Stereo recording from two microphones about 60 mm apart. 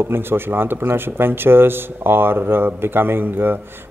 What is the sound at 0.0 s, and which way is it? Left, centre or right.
A man's voice, right.